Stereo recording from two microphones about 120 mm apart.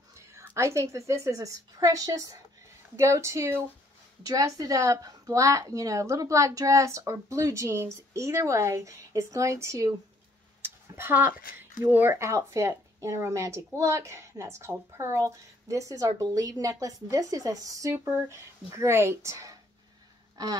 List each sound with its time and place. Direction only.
0.1 s a woman's voice: 25° right (ahead or behind)
11.0 s speech: 15° right (ahead or behind)